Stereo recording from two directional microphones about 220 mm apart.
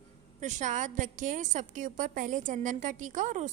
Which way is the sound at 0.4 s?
35° right (ahead or behind).